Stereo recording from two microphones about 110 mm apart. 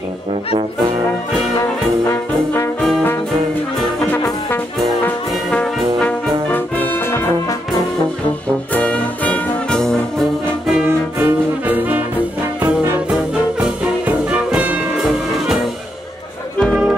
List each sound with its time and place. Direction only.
2.0 s trombone: 25° left (ahead or behind)
4.1 s brass instrument: 20° left (ahead or behind)
5.5 s brass instrument: 10° left (ahead or behind)
8.7 s music: 10° left (ahead or behind)
10.8 s music: 20° right (ahead or behind)
13.1 s music: 5° right (ahead or behind)